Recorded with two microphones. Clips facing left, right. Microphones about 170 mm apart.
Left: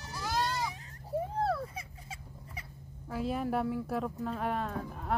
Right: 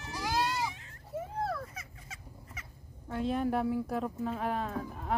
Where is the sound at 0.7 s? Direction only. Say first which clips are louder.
Left 5 dB; 40° left (ahead or behind).